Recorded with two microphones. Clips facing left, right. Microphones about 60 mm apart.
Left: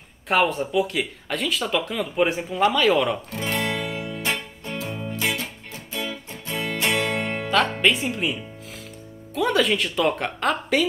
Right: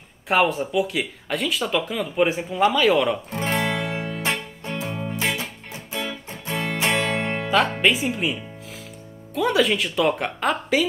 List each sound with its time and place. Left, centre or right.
0.3 s speech: centre
3.3 s music: right
7.4 s speech: centre